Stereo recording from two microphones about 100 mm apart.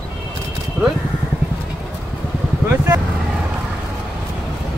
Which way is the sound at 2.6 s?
20° right (ahead or behind).